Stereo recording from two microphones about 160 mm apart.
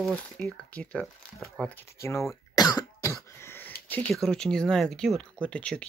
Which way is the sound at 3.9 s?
10° left (ahead or behind).